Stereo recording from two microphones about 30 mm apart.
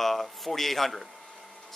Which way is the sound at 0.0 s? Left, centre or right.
Centre.